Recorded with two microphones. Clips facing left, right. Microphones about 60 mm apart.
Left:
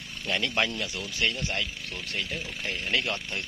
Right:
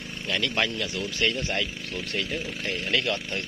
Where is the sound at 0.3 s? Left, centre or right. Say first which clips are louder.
Right 1 dB; left.